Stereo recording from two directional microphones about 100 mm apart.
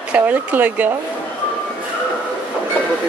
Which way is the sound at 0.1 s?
15° right (ahead or behind).